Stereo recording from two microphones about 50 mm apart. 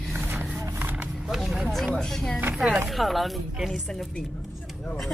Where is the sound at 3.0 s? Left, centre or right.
Centre.